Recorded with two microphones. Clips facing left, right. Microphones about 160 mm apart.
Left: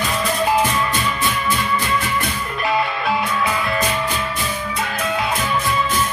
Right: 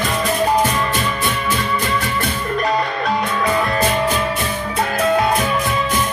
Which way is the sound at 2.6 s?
40° right (ahead or behind).